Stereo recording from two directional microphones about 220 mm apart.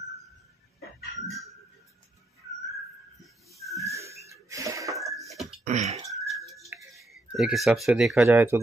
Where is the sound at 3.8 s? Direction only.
15° right (ahead or behind).